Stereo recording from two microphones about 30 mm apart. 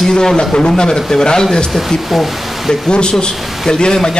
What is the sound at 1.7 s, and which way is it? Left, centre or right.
Speech, centre.